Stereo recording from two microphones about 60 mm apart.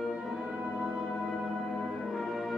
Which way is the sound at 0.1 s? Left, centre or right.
Centre.